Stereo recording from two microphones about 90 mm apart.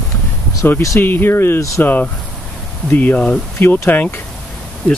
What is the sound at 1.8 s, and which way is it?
Speech, 20° left (ahead or behind).